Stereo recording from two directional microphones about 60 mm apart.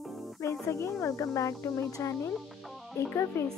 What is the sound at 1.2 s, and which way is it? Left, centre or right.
Speech, left.